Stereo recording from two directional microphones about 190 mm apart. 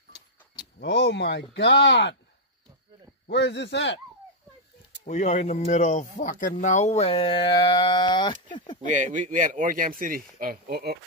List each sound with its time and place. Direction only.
0.7 s speech: 65° left (ahead or behind)
3.3 s speech: 65° left (ahead or behind)
5.0 s speech: 40° left (ahead or behind)
8.8 s speech: 40° right (ahead or behind); by 11.0 s 55° right (ahead or behind)